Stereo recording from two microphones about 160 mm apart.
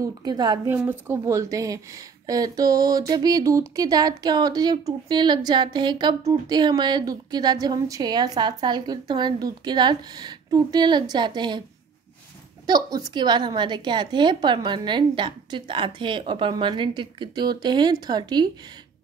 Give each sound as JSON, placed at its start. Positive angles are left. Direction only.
{"t": 0.0, "sound": "speech", "side_deg": -25}
{"t": 0.7, "sound": "speech", "side_deg": -10}
{"t": 12.6, "sound": "speech", "side_deg": -25}